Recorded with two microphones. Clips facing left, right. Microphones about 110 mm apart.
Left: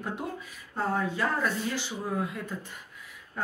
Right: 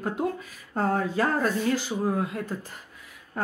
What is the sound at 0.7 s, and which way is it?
Speech, 45° right (ahead or behind).